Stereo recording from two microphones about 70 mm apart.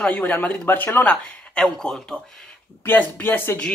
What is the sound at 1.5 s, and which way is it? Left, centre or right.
Speech, centre.